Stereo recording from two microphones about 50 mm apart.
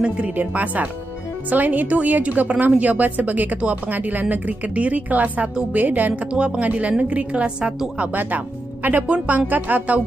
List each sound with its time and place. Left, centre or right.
0.4 s speech: right
6.3 s a woman's voice: right